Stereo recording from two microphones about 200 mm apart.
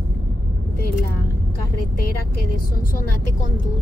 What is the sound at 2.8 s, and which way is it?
Speech, 45° left (ahead or behind).